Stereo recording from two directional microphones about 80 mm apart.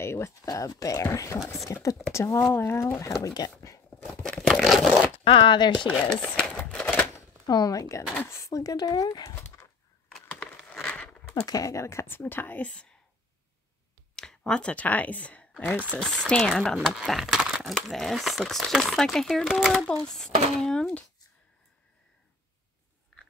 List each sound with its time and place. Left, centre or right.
0.0 s a sound: left
0.5 s speech: left
4.1 s a sound: centre
5.2 s speech: left
5.9 s a sound: centre
6.8 s a sound: centre
7.4 s speech: left
11.3 s speech: left; by 12.9 s centre
14.1 s speech: centre
16.0 s speech: centre
16.9 s speech: centre
17.7 s speech: centre